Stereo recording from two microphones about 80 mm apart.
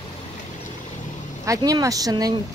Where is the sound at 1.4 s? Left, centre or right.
Right.